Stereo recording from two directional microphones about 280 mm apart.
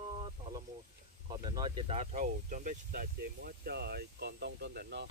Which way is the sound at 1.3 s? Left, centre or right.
Centre.